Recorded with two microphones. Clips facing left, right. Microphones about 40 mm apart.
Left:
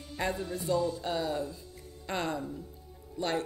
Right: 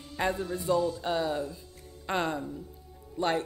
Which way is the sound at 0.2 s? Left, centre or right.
Centre.